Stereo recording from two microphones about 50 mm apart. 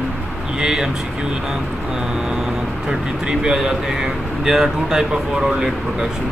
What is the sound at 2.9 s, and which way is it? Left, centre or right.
Speech, centre.